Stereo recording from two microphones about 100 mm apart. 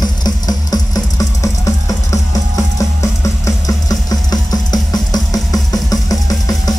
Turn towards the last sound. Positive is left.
turn(degrees=35)  # may be behind; listen again after turning